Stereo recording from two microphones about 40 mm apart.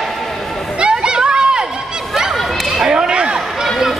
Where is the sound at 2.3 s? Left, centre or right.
Centre.